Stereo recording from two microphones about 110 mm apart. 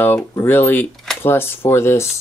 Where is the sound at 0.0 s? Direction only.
20° left (ahead or behind).